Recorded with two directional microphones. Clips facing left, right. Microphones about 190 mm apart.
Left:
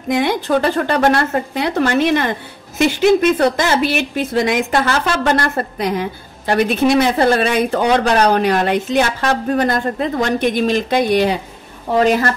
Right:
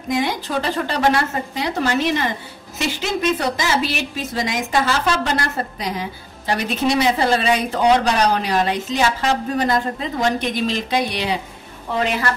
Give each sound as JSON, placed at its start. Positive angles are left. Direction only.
{"t": 0.1, "sound": "a woman's voice", "side_deg": 55}